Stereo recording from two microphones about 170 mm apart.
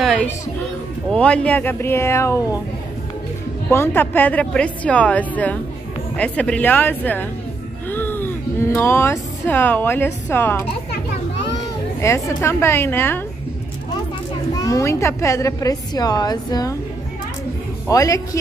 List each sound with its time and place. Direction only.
1.1 s a woman's voice: 5° left (ahead or behind)
3.7 s a woman's voice: 15° left (ahead or behind)
12.0 s a woman's voice: 15° left (ahead or behind)
14.6 s a woman's voice: 20° left (ahead or behind)
17.8 s a woman's voice: 20° left (ahead or behind)